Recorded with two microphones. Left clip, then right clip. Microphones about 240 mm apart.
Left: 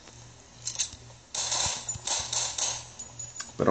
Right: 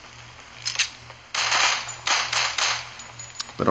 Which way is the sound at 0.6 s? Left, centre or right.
Right.